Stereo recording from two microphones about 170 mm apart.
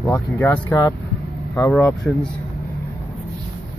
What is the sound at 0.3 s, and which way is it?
Speech, 5° left (ahead or behind).